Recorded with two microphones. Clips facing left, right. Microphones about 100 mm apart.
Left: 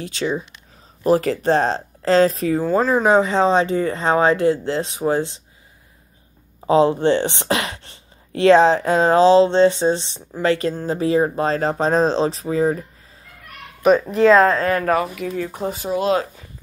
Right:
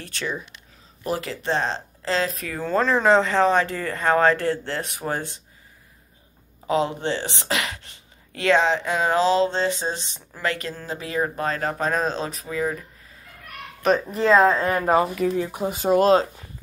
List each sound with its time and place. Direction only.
0.0 s speech: 20° left (ahead or behind)
1.0 s speech: 40° left (ahead or behind)
2.6 s speech: 10° left (ahead or behind)
6.7 s speech: 30° left (ahead or behind)
14.1 s speech: centre (ahead or behind)
14.5 s speech: 15° right (ahead or behind)
15.9 s speech: 55° right (ahead or behind)